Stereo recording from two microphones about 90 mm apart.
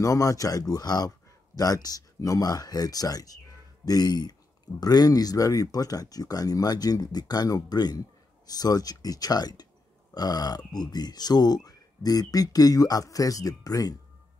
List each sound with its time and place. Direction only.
0.0 s speech: 40° left (ahead or behind)